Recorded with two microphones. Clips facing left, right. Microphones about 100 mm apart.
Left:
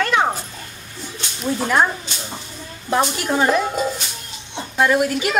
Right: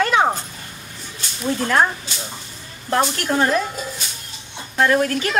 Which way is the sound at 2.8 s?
10° left (ahead or behind).